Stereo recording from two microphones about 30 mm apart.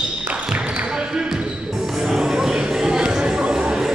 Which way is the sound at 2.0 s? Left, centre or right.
Centre.